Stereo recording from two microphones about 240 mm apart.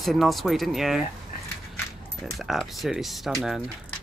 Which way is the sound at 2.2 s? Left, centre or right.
Centre.